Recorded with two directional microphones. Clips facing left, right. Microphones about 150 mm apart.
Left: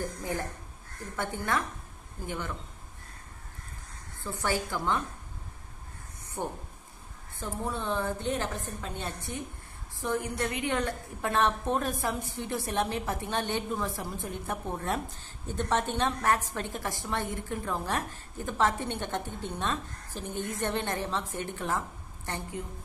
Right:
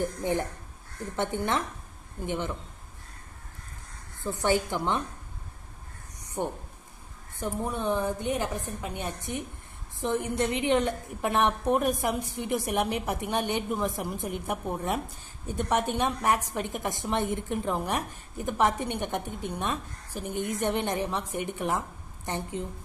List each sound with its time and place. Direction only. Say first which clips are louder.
0.0 s a woman's voice: right 5 dB; 20° right (ahead or behind)
4.2 s a woman's voice: right 5 dB; 20° right (ahead or behind)
6.4 s a woman's voice: right 3 dB; 20° right (ahead or behind)